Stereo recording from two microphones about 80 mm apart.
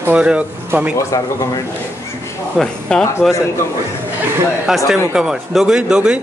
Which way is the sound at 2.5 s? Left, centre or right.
Centre.